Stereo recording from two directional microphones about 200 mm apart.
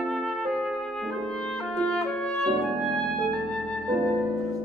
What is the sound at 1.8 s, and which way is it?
Clarinet, 5° left (ahead or behind).